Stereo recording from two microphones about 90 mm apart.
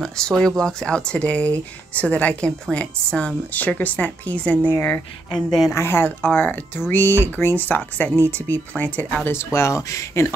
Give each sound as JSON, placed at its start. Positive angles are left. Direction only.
{"t": 0.0, "sound": "speech", "side_deg": 5}
{"t": 5.3, "sound": "speech", "side_deg": 5}
{"t": 5.8, "sound": "speech", "side_deg": 25}